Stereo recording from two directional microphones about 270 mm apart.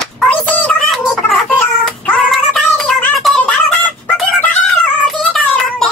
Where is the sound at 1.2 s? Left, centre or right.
Centre.